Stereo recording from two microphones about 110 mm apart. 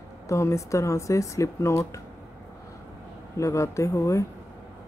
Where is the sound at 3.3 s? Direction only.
25° left (ahead or behind).